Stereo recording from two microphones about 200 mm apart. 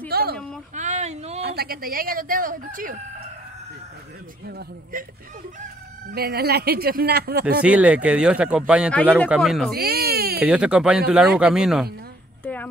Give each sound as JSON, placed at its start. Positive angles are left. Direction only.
{"t": 0.1, "sound": "a sound", "side_deg": -50}
{"t": 0.7, "sound": "a sound", "side_deg": -35}
{"t": 1.4, "sound": "speech", "side_deg": -50}
{"t": 4.5, "sound": "speech", "side_deg": -55}
{"t": 6.1, "sound": "speech", "side_deg": -50}
{"t": 7.6, "sound": "speech", "side_deg": -5}
{"t": 9.8, "sound": "baby cry", "side_deg": -50}
{"t": 10.4, "sound": "speech", "side_deg": -5}